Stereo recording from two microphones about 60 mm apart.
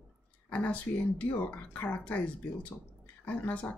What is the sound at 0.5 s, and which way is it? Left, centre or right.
Speech, left.